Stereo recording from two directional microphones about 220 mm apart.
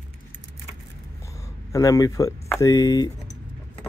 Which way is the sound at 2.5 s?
15° left (ahead or behind).